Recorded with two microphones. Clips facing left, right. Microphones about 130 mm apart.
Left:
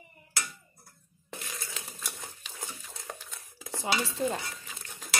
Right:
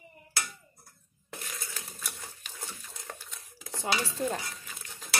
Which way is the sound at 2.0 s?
15° left (ahead or behind).